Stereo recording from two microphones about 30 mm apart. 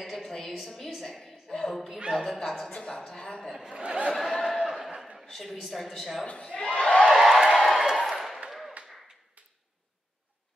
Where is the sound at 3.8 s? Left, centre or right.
Right.